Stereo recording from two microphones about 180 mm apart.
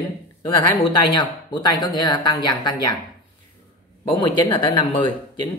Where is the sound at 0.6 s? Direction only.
25° left (ahead or behind).